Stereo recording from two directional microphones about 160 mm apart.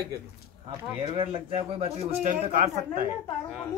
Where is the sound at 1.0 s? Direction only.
30° right (ahead or behind).